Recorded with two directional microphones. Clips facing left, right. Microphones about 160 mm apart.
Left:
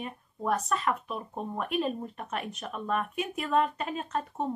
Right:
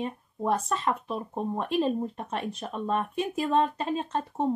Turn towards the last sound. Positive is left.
turn(degrees=-30)  # may be behind; listen again after turning